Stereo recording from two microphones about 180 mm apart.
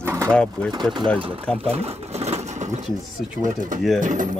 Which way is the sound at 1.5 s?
35° right (ahead or behind).